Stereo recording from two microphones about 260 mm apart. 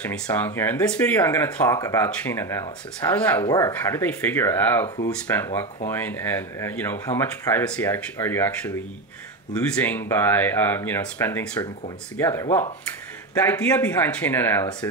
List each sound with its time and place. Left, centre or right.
0.0 s speech: centre
4.8 s speech: centre
5.3 s speech: centre